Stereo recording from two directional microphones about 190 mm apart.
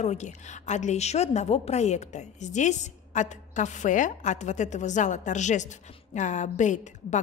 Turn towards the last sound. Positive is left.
turn(degrees=40)  # may be behind; listen again after turning